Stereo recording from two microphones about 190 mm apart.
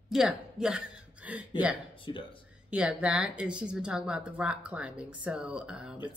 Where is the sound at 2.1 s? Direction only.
25° left (ahead or behind).